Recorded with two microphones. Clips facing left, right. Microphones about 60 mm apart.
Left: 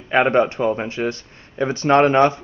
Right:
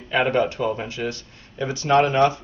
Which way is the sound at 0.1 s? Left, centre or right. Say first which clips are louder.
Left 4 dB; left.